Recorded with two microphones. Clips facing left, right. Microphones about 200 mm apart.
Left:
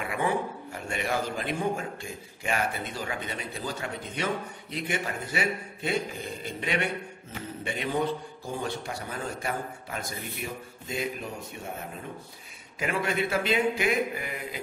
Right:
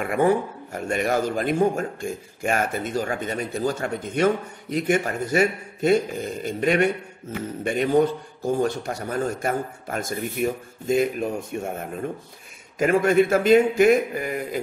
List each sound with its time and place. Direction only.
0.0 s a man's voice: 50° right (ahead or behind)